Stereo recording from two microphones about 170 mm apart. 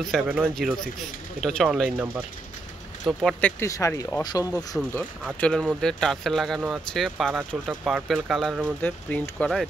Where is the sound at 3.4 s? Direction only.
15° left (ahead or behind).